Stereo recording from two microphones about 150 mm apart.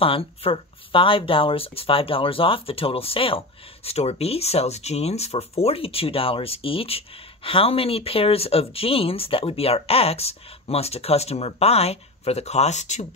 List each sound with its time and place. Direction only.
0.0 s speech: 40° left (ahead or behind)